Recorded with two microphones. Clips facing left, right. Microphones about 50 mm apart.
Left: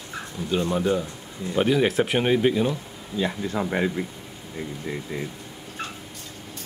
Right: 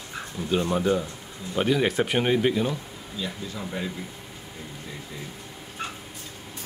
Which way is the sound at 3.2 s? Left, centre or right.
Left.